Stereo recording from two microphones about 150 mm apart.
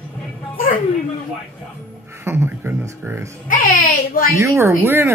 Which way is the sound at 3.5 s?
70° left (ahead or behind).